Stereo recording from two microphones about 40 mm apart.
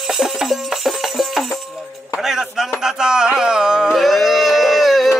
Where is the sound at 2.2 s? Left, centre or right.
Centre.